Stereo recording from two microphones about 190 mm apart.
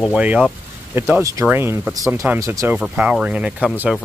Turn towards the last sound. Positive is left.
turn(degrees=-5)  # may be behind; listen again after turning